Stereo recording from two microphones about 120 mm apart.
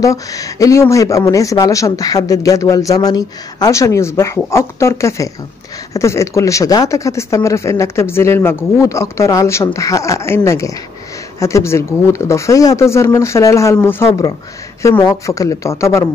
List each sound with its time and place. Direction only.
0.0 s speech: 30° left (ahead or behind)